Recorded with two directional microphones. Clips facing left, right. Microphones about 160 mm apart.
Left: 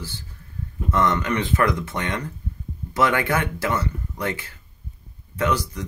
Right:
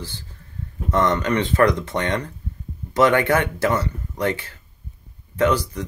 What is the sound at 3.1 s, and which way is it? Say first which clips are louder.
Speech: right 4 dB; 20° right (ahead or behind).